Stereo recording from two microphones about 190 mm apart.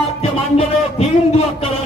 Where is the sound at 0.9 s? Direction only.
30° left (ahead or behind).